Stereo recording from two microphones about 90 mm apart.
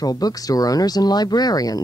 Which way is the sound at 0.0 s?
45° left (ahead or behind).